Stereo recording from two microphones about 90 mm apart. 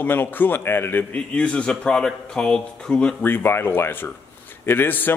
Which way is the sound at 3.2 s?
25° left (ahead or behind).